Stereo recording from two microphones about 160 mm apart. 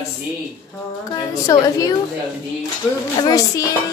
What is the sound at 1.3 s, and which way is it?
Speech, 20° left (ahead or behind).